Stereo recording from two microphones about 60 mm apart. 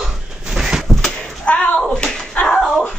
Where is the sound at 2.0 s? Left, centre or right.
Centre.